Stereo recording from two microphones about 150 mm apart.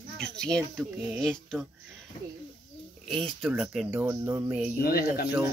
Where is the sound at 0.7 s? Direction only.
10° right (ahead or behind).